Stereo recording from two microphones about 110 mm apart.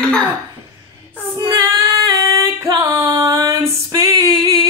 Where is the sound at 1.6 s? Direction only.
30° right (ahead or behind).